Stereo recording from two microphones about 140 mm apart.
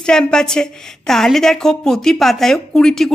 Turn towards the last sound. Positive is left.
turn(degrees=5)  # may be behind; listen again after turning